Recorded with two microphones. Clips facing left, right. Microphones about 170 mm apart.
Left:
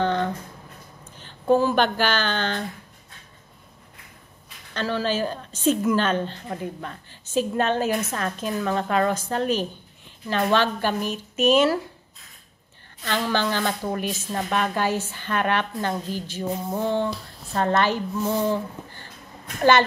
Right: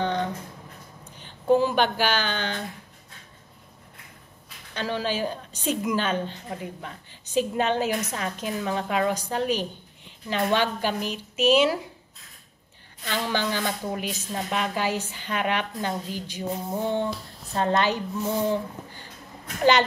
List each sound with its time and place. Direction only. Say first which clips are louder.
0.0 s a sound: left 3 dB; 15° right (ahead or behind)
1.1 s speech: left 1 dB; 15° right (ahead or behind)
4.7 s a woman's voice: left 3 dB; 15° right (ahead or behind)
10.9 s speech: left 3 dB; 50° left (ahead or behind)
13.0 s a woman's voice: left 3 dB; 15° right (ahead or behind)
18.5 s a sound: left 1 dB; 15° right (ahead or behind)